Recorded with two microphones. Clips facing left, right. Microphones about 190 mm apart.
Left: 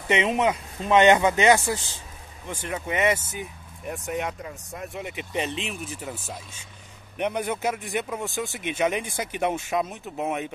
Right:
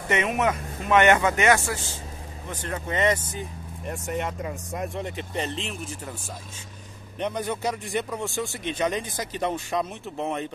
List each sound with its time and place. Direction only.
0.1 s speech: 20° left (ahead or behind)
2.5 s speech: 10° left (ahead or behind)
7.2 s speech: 10° left (ahead or behind)